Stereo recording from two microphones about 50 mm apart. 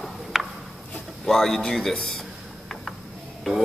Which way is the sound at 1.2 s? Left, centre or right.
Centre.